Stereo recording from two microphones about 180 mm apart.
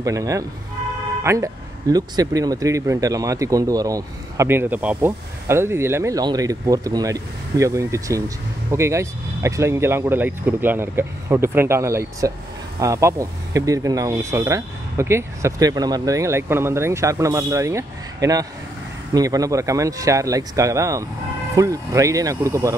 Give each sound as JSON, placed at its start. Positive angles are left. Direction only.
{"t": 0.0, "sound": "speech", "side_deg": -20}